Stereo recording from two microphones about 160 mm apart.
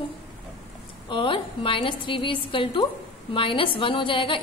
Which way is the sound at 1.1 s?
30° left (ahead or behind).